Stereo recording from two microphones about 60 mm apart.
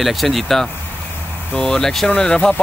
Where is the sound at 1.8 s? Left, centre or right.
Centre.